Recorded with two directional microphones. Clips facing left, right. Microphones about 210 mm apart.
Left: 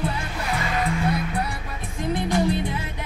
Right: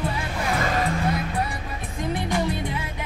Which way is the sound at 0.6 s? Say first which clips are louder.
Even; 45° right (ahead or behind).